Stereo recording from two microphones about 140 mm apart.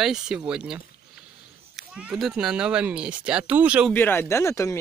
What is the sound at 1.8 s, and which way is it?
Speech, 5° right (ahead or behind).